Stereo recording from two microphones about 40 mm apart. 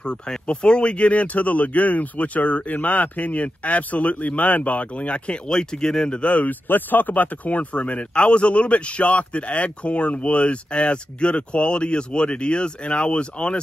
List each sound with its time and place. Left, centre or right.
0.5 s speech: left
6.7 s a man's voice: left